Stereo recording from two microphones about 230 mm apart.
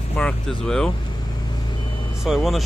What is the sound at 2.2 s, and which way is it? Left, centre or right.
Speech, centre.